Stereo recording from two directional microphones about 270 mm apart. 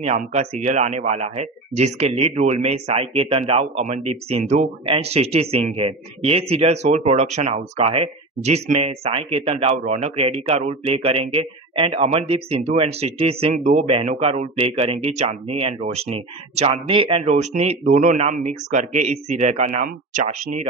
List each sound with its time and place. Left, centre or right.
0.0 s speech: right